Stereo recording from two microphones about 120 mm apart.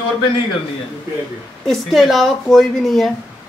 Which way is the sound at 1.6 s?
Centre (ahead or behind).